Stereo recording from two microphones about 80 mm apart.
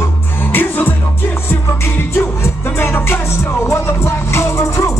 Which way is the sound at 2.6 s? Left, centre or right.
Left.